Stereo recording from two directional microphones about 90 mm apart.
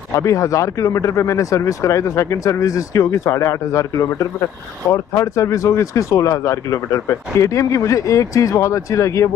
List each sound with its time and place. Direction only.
0.1 s speech: 35° left (ahead or behind)